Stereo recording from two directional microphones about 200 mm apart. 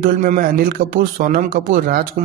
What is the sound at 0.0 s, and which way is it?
Speech, 40° right (ahead or behind).